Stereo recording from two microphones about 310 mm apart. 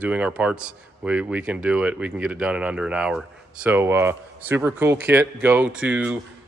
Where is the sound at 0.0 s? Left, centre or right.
Centre.